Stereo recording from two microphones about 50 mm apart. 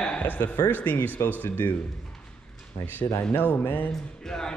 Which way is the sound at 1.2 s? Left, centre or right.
Left.